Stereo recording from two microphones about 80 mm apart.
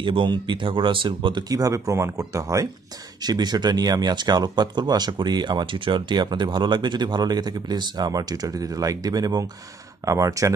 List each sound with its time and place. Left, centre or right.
0.0 s speech: right
1.5 s speech: right
3.2 s speech: right